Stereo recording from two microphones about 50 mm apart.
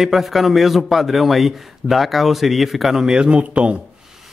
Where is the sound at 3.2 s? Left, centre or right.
Right.